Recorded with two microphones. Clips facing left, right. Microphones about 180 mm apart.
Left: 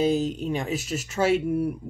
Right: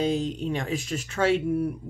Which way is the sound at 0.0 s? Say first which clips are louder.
Left 3 dB; 5° left (ahead or behind).